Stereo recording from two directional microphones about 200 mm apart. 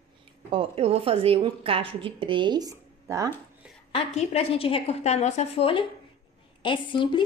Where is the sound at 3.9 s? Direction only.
30° left (ahead or behind).